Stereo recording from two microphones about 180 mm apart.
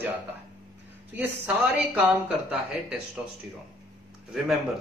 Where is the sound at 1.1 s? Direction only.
10° right (ahead or behind).